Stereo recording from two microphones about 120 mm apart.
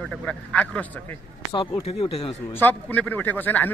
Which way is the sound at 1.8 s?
55° left (ahead or behind).